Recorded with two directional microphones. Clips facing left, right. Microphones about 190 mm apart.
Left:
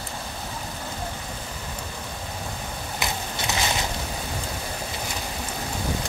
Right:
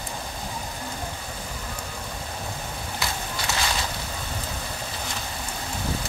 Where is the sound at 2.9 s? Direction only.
20° left (ahead or behind).